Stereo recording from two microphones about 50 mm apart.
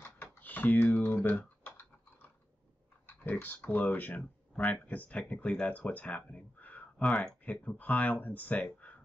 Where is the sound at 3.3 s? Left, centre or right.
Left.